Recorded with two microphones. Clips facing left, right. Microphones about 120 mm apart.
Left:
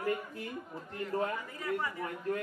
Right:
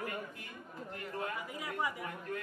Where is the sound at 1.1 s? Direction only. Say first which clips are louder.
Left 7 dB; 35° left (ahead or behind).